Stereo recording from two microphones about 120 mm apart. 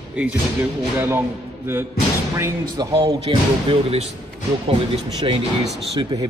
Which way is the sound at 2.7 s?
30° right (ahead or behind).